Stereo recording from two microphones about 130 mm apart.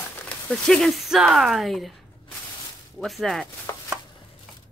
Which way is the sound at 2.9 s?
Centre (ahead or behind).